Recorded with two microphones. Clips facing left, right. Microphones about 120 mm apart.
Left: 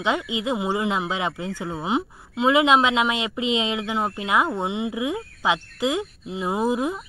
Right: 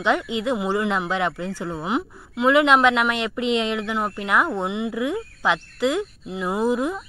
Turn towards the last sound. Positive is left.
turn(degrees=15)  # may be behind; listen again after turning